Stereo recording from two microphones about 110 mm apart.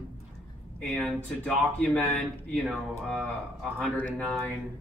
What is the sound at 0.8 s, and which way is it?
Speech, 5° left (ahead or behind).